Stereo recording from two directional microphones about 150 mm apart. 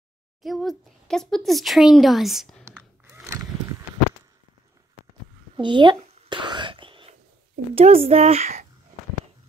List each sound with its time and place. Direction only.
0.4 s speech: centre (ahead or behind)
2.6 s a sound: 15° right (ahead or behind)
5.6 s whispering: 30° right (ahead or behind)
7.7 s speech: 40° right (ahead or behind)